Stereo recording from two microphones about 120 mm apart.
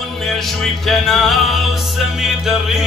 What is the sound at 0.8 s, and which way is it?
Speech, centre (ahead or behind).